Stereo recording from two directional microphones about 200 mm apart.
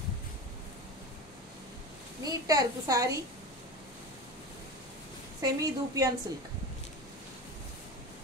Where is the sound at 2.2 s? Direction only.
20° right (ahead or behind).